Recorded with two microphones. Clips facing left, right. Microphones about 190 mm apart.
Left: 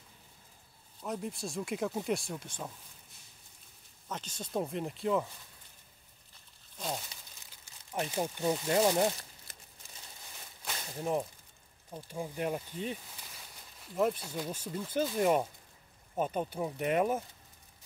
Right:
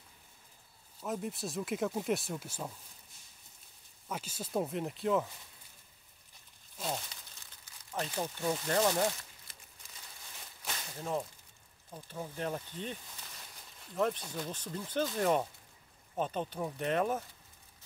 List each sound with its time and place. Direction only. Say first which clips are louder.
1.0 s speech: even; centre (ahead or behind)
4.1 s speech: right 1 dB; 10° right (ahead or behind)
6.8 s speech: even; centre (ahead or behind)
7.9 s speech: left 3 dB; 15° left (ahead or behind)
11.0 s speech: left 4 dB; 15° left (ahead or behind)